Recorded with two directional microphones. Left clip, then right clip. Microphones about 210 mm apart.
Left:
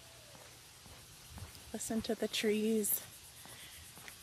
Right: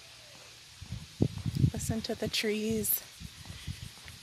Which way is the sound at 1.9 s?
5° right (ahead or behind).